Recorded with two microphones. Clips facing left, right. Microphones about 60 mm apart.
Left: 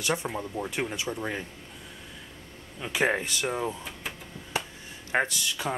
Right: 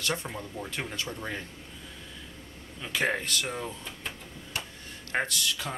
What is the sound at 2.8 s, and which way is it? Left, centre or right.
Speech, centre.